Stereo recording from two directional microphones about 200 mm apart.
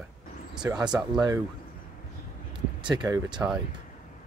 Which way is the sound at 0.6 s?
15° right (ahead or behind).